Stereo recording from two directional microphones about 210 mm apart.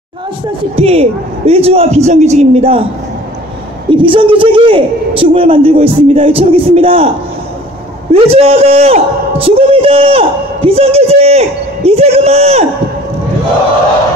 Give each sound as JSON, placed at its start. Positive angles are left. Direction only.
{"t": 0.7, "sound": "a man's voice", "side_deg": -30}
{"t": 3.9, "sound": "a man's voice", "side_deg": -25}
{"t": 8.1, "sound": "a man's voice", "side_deg": -30}